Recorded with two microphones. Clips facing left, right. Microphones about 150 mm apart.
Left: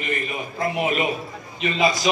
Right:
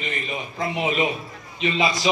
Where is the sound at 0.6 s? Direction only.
5° left (ahead or behind).